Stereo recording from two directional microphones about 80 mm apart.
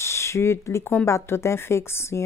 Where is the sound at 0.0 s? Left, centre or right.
Left.